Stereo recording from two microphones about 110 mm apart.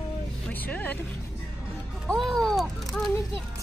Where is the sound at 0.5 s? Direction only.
15° left (ahead or behind).